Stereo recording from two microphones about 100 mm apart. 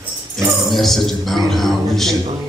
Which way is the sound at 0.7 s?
Centre (ahead or behind).